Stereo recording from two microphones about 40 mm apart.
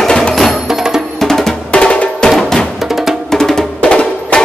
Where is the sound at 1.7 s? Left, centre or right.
Left.